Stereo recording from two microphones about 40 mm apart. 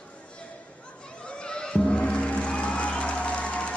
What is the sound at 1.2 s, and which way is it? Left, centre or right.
Music, left.